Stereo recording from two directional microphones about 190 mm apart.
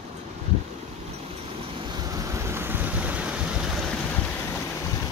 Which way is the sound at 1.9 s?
20° right (ahead or behind).